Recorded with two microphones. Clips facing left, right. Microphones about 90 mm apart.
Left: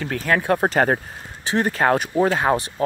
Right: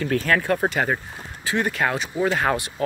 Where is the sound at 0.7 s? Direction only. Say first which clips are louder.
Left 5 dB; 45° left (ahead or behind).